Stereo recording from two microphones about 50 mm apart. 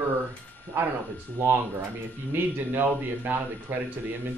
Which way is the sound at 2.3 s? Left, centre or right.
Right.